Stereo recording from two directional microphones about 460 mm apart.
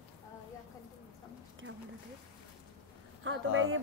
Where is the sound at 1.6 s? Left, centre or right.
Right.